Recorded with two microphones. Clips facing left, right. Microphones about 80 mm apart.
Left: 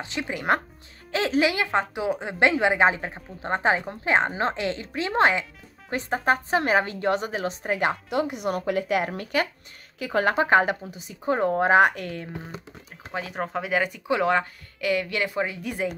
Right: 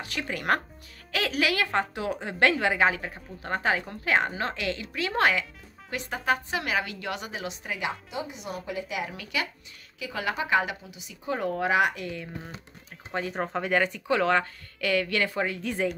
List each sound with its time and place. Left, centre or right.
0.0 s a woman's voice: left
7.9 s speech: left
13.1 s speech: centre